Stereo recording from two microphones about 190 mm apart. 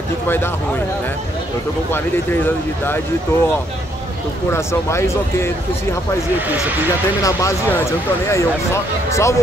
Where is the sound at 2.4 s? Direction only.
10° left (ahead or behind).